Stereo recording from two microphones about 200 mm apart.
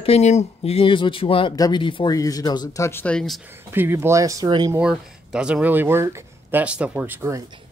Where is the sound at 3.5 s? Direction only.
10° right (ahead or behind).